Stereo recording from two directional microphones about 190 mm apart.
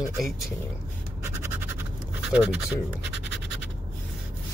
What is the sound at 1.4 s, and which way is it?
Scratch, 10° right (ahead or behind).